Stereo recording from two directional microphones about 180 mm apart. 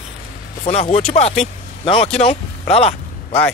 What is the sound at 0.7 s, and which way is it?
Speech, 35° left (ahead or behind).